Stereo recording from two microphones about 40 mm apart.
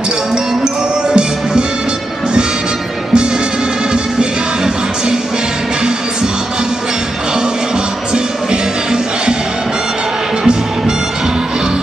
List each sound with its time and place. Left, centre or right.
1.1 s music: right
3.9 s music: centre
8.1 s music: right